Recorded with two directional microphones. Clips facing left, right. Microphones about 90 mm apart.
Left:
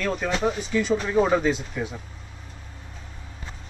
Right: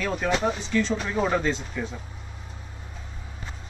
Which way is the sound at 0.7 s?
10° left (ahead or behind).